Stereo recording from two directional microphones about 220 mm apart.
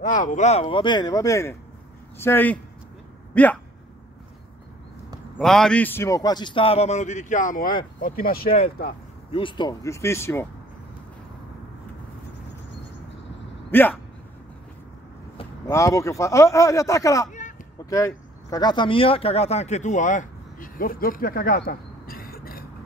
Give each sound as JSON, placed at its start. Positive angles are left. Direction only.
{"t": 0.0, "sound": "a man's voice", "side_deg": 35}
{"t": 5.4, "sound": "a man's voice", "side_deg": 0}
{"t": 9.3, "sound": "speech", "side_deg": 20}
{"t": 13.7, "sound": "speech", "side_deg": 10}
{"t": 15.3, "sound": "speech", "side_deg": 15}
{"t": 17.3, "sound": "a sound", "side_deg": 35}
{"t": 17.8, "sound": "speech", "side_deg": 15}